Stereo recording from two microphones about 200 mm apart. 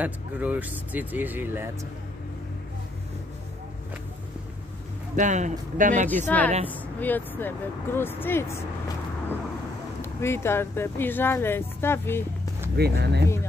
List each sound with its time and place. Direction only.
0.0 s speech: 10° right (ahead or behind)
5.1 s a man's voice: 35° right (ahead or behind)
6.0 s speech: 10° left (ahead or behind)
10.0 s speech: 10° left (ahead or behind)
12.7 s speech: 55° right (ahead or behind)